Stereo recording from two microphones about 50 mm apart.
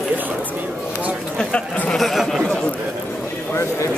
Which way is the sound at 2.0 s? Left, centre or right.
Centre.